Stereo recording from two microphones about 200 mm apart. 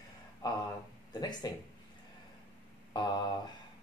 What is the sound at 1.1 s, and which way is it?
Speech, 20° left (ahead or behind).